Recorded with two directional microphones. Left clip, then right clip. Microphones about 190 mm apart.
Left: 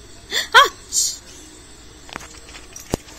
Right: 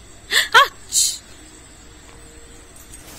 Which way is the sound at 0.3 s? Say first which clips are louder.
Even; 20° left (ahead or behind).